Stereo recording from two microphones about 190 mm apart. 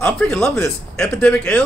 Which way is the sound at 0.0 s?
5° left (ahead or behind).